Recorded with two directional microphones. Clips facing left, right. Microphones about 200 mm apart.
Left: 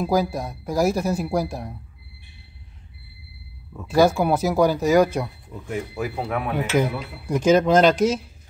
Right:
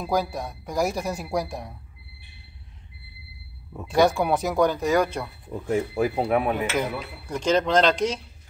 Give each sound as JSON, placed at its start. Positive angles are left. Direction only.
{"t": 0.0, "sound": "speech", "side_deg": 0}
{"t": 3.8, "sound": "speech", "side_deg": 5}
{"t": 5.9, "sound": "speech", "side_deg": -30}
{"t": 6.2, "sound": "speech", "side_deg": -15}
{"t": 6.8, "sound": "speech", "side_deg": 10}